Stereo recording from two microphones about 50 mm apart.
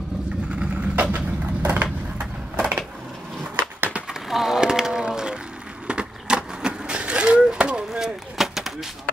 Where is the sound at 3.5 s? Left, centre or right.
Right.